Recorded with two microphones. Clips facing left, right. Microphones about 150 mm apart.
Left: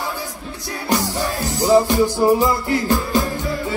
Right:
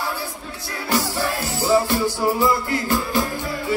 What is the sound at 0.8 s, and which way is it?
Music, 20° left (ahead or behind).